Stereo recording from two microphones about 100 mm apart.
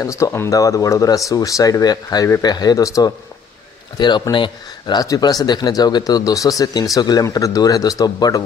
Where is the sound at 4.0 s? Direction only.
50° left (ahead or behind).